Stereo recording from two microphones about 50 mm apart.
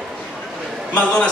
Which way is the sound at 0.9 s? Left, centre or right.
Left.